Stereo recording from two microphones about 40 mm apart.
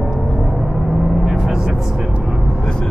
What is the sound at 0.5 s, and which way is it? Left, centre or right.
Vehicle, centre.